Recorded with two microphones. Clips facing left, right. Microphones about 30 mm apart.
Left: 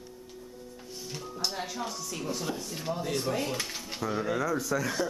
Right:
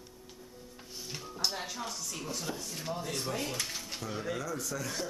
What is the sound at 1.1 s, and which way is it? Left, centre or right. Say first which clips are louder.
Speech: left 1 dB; centre.